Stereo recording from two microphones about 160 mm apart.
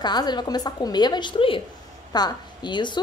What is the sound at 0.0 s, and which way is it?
A woman's voice, 25° left (ahead or behind).